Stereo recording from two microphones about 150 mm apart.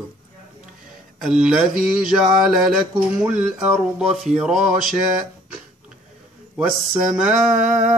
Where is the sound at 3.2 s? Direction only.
5° right (ahead or behind).